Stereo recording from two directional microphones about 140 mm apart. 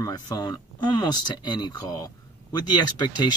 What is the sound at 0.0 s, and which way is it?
Speech, 30° left (ahead or behind).